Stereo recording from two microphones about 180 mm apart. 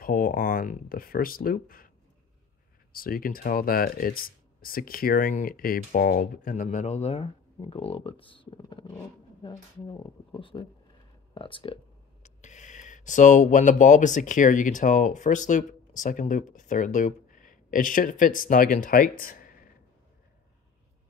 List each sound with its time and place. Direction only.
0.0 s speech: 50° left (ahead or behind)
2.9 s speech: 55° left (ahead or behind)